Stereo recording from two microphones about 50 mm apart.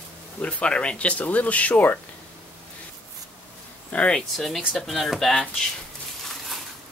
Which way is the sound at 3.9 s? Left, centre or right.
Left.